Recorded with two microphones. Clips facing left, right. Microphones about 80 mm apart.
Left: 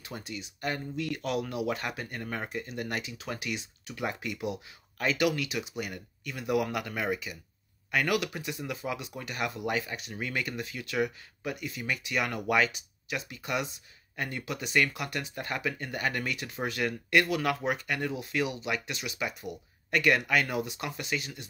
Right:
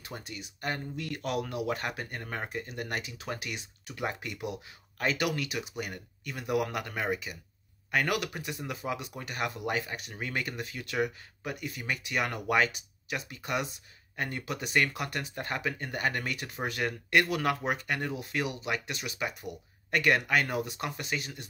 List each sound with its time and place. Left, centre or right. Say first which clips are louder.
0.1 s speech: left 3 dB; right